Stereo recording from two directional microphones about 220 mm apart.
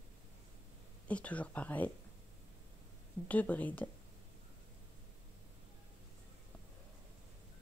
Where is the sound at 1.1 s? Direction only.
5° left (ahead or behind).